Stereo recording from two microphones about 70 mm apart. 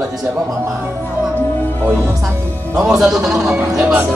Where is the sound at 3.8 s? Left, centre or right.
Centre.